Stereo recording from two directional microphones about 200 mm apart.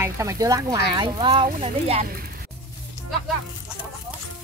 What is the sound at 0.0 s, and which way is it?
Speech, 15° right (ahead or behind).